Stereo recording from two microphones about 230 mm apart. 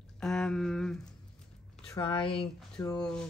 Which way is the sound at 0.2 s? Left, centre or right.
Centre.